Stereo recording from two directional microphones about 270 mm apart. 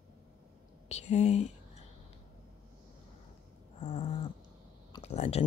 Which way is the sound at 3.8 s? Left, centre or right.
Left.